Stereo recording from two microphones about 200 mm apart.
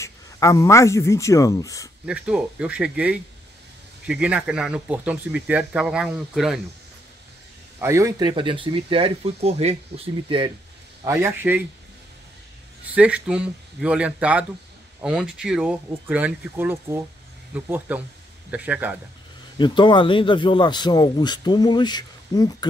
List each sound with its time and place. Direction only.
0.0 s a man's voice: 15° left (ahead or behind)
2.0 s speech: 5° right (ahead or behind)
7.8 s speech: 15° right (ahead or behind)
11.1 s speech: 10° right (ahead or behind)
12.9 s speech: 5° right (ahead or behind)
19.6 s speech: 25° left (ahead or behind)